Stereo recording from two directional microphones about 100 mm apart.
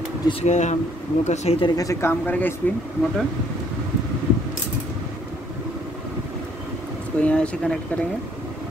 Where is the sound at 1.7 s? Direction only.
35° left (ahead or behind).